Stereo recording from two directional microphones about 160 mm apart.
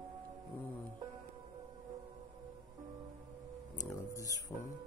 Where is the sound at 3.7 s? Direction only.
20° left (ahead or behind).